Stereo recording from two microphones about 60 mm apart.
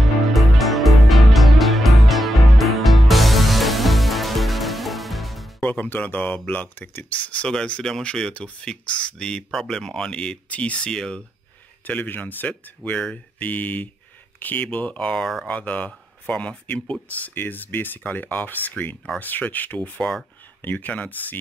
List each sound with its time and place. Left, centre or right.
0.0 s music: centre
5.6 s music: left
5.9 s speech: left
7.4 s speech: centre
11.8 s speech: left; by 15.3 s centre
15.4 s speech: left
17.3 s speech: left